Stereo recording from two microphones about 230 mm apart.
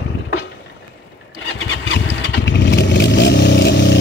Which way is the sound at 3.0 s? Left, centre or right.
Left.